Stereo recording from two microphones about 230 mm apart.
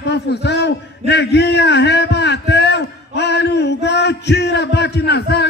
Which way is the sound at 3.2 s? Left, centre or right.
Left.